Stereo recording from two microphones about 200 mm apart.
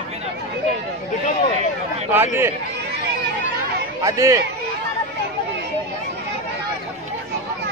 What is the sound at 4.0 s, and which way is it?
Speech, 15° right (ahead or behind).